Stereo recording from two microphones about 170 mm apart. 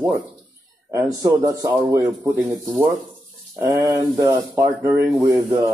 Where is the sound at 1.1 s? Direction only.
20° right (ahead or behind).